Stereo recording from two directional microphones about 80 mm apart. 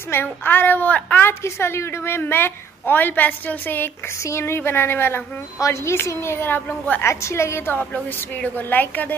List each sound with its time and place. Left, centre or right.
0.1 s a woman's voice: left
1.2 s a woman's voice: left
7.8 s a woman's voice: centre